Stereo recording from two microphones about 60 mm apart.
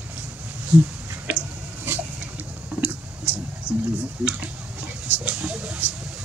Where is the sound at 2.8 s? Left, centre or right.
Right.